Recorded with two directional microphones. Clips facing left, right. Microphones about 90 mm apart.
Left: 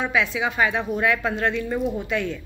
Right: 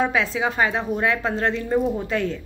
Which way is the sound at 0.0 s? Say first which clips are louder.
Right 2 dB; 35° right (ahead or behind).